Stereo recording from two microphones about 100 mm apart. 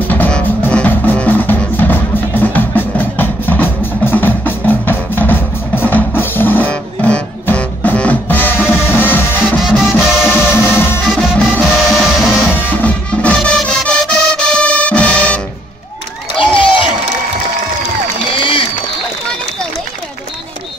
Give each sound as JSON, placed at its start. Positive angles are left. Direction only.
{"t": 0.1, "sound": "music", "side_deg": 15}
{"t": 9.6, "sound": "music", "side_deg": -5}
{"t": 10.2, "sound": "music", "side_deg": 25}
{"t": 11.1, "sound": "music", "side_deg": 10}
{"t": 12.4, "sound": "music", "side_deg": 20}
{"t": 16.3, "sound": "crowd", "side_deg": 60}
{"t": 18.4, "sound": "crowd", "side_deg": 65}